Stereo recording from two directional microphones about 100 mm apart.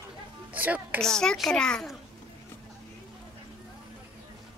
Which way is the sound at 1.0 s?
5° left (ahead or behind).